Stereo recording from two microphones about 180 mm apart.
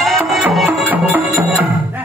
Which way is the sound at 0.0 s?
5° right (ahead or behind).